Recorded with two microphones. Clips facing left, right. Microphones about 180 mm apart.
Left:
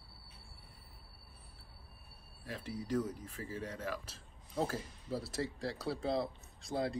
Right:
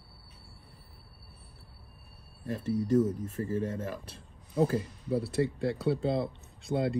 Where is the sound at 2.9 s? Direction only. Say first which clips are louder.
Right 9 dB; 25° right (ahead or behind).